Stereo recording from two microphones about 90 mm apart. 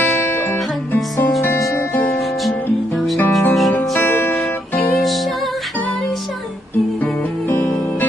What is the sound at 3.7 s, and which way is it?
Music, 25° left (ahead or behind).